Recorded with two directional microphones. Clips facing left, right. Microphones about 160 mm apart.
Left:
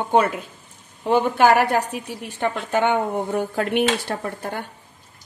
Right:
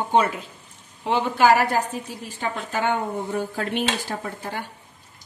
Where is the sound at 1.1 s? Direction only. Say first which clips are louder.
Left 2 dB; 55° left (ahead or behind).